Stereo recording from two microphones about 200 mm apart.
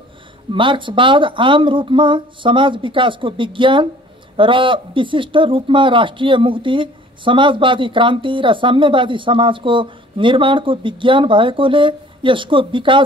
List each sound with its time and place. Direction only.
0.5 s speech: 25° right (ahead or behind)